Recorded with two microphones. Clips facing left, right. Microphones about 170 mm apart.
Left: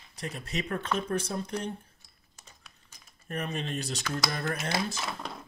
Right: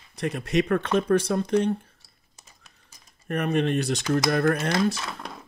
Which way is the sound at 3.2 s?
70° right (ahead or behind).